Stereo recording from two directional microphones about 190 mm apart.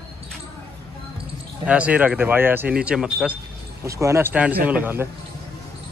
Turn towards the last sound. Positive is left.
turn(degrees=-10)  # may be behind; listen again after turning